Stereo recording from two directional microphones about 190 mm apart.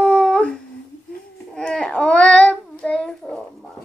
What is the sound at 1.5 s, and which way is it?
Babbling, 5° left (ahead or behind).